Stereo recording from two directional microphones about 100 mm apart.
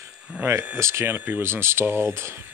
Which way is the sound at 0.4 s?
25° right (ahead or behind).